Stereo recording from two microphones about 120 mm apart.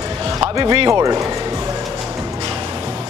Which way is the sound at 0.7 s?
40° right (ahead or behind).